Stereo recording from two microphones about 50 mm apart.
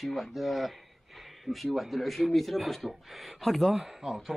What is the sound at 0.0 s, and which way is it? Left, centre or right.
A man's voice, centre.